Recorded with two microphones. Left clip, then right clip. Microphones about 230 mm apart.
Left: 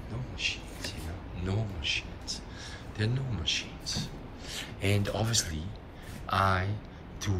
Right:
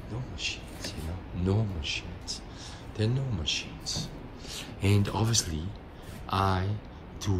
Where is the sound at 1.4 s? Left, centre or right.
Right.